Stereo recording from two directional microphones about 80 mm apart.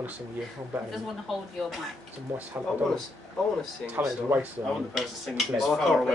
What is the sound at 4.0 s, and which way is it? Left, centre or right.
Speech, right.